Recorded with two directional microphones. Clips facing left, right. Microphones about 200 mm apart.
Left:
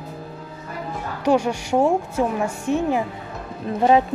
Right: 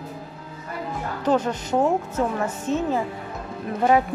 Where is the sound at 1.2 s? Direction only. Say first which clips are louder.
Left 3 dB; 10° left (ahead or behind).